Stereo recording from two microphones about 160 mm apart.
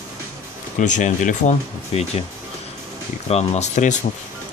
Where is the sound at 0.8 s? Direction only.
50° left (ahead or behind).